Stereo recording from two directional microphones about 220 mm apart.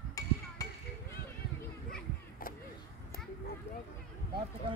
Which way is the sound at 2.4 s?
40° left (ahead or behind).